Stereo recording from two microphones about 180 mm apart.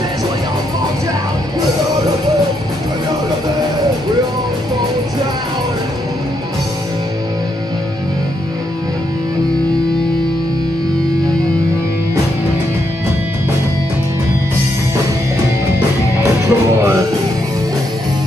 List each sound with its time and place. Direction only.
16.4 s music: 15° right (ahead or behind)